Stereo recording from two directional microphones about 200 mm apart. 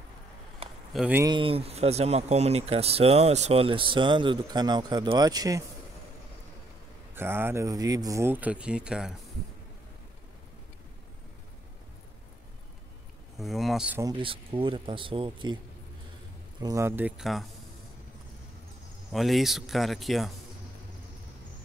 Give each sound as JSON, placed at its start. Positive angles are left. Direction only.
{"t": 0.6, "sound": "a sound", "side_deg": -30}
{"t": 0.9, "sound": "speech", "side_deg": -5}
{"t": 1.2, "sound": "speech", "side_deg": -25}
{"t": 7.2, "sound": "speech", "side_deg": -10}
{"t": 13.4, "sound": "speech", "side_deg": 0}
{"t": 14.0, "sound": "speech", "side_deg": -25}
{"t": 19.1, "sound": "speech", "side_deg": 0}